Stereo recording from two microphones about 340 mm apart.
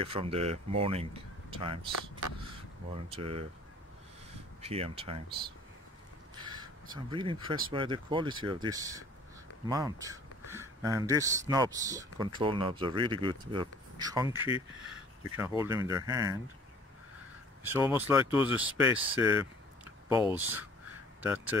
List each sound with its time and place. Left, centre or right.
0.0 s speech: centre
3.1 s speech: centre
4.6 s speech: centre
6.3 s crow: centre
7.1 s speech: centre
17.6 s speech: centre